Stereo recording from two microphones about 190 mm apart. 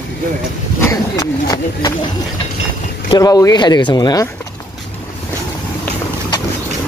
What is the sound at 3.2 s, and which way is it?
Speech, 20° left (ahead or behind).